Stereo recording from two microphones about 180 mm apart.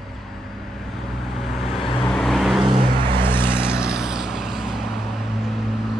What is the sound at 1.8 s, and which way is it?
Vehicle, 25° left (ahead or behind).